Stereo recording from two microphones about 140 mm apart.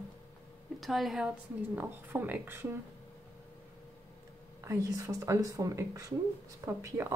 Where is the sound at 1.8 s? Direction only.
15° right (ahead or behind).